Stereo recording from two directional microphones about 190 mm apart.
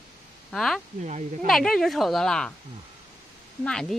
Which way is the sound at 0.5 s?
Centre (ahead or behind).